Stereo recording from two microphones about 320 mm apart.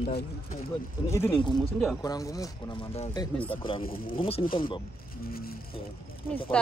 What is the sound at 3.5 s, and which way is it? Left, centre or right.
Speech, centre.